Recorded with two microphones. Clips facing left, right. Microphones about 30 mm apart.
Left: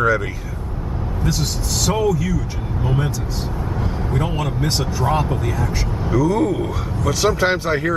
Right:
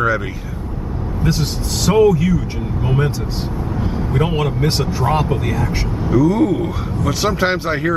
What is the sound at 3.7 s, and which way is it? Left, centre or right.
Vehicle, centre.